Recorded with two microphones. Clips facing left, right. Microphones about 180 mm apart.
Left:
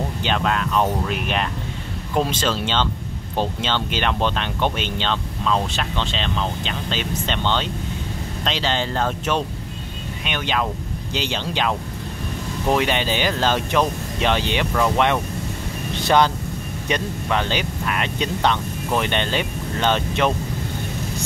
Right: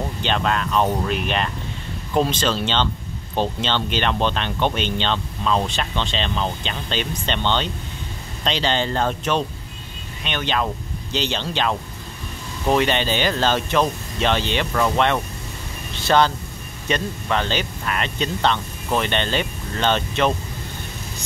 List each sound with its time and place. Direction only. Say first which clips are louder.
0.2 s speech: even; 5° left (ahead or behind)